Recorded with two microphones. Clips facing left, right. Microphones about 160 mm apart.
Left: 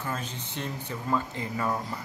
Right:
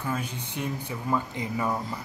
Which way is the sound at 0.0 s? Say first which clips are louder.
Right 3 dB; 10° right (ahead or behind).